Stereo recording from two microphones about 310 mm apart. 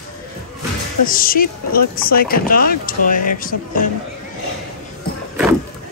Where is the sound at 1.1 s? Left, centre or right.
Left.